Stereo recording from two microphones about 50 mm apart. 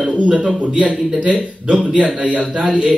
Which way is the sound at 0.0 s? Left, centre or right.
Right.